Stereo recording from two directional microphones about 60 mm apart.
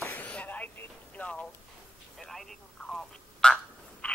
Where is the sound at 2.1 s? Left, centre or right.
Centre.